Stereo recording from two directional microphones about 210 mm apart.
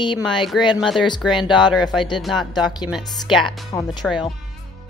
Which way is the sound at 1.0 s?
20° left (ahead or behind).